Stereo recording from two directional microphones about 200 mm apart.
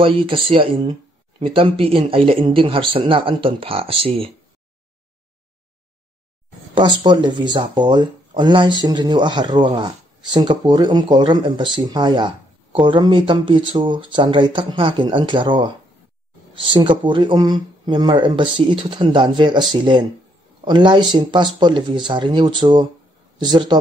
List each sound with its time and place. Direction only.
0.0 s speech: 25° right (ahead or behind)
6.7 s speech: 20° right (ahead or behind)
16.6 s speech: 25° right (ahead or behind)